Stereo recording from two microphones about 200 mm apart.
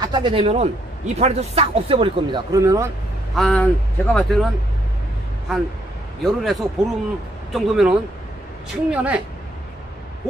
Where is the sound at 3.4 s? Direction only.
Centre (ahead or behind).